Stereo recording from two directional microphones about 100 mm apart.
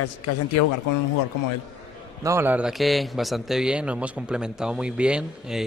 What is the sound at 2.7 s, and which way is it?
A man's voice, centre (ahead or behind).